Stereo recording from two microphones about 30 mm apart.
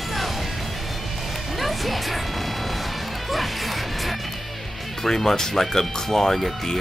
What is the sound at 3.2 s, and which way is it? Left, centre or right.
Music, centre.